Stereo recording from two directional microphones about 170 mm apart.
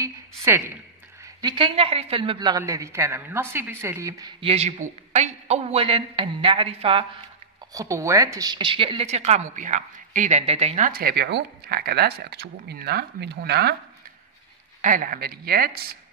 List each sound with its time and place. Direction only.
0.0 s a woman's voice: 10° right (ahead or behind)
1.2 s a woman's voice: 25° right (ahead or behind)
4.4 s speech: 35° right (ahead or behind)
7.7 s speech: 20° right (ahead or behind); by 10.9 s 40° right (ahead or behind)
10.9 s speech: 60° right (ahead or behind)
14.8 s speech: 50° right (ahead or behind)